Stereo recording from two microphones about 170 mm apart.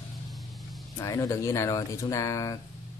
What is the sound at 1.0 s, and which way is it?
Speech, 20° left (ahead or behind).